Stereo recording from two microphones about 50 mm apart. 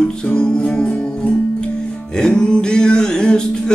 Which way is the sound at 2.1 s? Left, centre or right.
Centre.